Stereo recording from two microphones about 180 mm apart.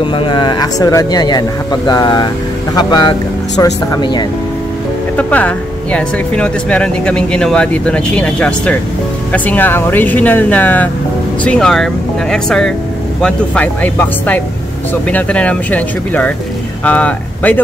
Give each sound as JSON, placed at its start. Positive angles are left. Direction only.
{"t": 0.0, "sound": "speech", "side_deg": 30}
{"t": 5.1, "sound": "speech", "side_deg": 10}